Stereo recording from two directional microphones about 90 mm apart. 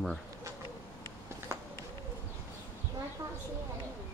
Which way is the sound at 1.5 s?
35° right (ahead or behind).